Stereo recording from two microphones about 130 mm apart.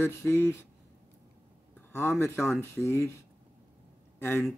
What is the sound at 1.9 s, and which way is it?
Speech, 15° left (ahead or behind).